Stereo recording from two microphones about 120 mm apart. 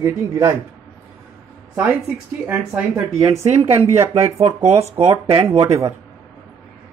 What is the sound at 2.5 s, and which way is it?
Speech, 10° right (ahead or behind).